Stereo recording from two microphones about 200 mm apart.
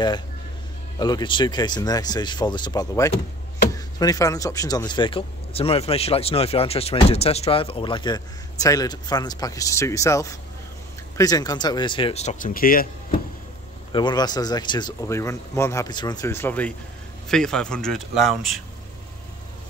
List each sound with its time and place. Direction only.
0.9 s speech: 20° left (ahead or behind); by 13.2 s 45° left (ahead or behind)
13.9 s speech: 20° left (ahead or behind); by 18.6 s centre (ahead or behind)